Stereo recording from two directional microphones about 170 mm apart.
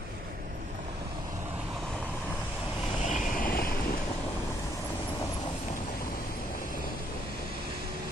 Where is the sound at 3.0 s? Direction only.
55° left (ahead or behind).